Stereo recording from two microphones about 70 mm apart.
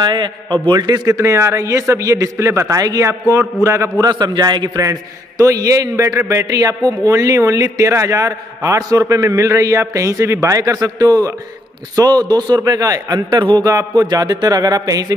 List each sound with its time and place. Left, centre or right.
0.0 s a man's voice: right
1.1 s a man's voice: right
3.1 s a man's voice: right
4.0 s a man's voice: right
5.4 s a man's voice: right
5.9 s a man's voice: right
6.4 s speech: right
7.1 s a man's voice: right
13.6 s a man's voice: right
14.0 s speech: right